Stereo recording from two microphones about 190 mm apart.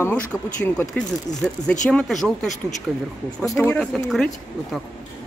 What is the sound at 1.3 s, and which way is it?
Speech, 20° left (ahead or behind).